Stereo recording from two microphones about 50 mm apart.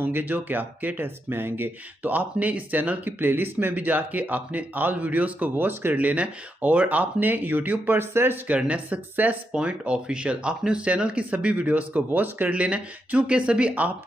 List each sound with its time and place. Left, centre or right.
0.0 s speech: right
2.0 s speech: right
5.7 s speech: right
5.9 s speech: right
8.5 s speech: right
9.5 s speech: right
12.5 s speech: right